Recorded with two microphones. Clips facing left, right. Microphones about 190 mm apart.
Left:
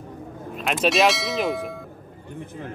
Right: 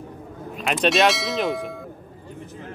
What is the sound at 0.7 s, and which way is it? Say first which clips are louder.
Speech: right 1 dB; centre (ahead or behind).